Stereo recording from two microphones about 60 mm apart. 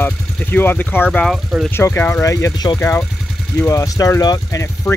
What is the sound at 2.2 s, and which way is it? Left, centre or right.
Speech, left.